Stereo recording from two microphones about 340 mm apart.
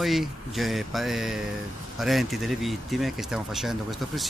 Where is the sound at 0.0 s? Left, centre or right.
Centre.